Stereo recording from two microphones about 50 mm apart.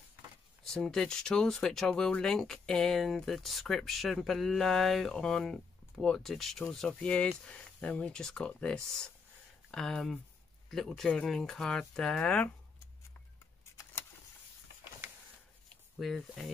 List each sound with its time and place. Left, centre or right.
0.7 s speech: centre
7.0 s speech: centre
16.0 s speech: centre